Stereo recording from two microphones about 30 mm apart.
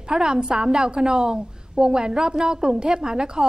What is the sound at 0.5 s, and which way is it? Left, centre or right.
A woman's voice, centre.